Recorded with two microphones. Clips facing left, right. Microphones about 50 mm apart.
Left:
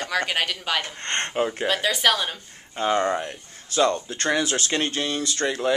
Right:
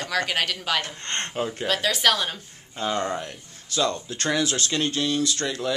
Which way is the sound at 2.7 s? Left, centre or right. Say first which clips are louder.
Left 4 dB; centre.